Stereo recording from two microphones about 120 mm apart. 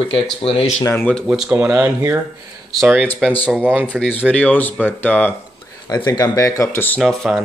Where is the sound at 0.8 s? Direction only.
15° left (ahead or behind).